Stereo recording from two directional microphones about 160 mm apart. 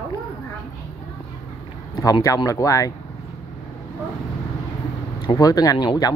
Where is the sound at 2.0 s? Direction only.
20° left (ahead or behind).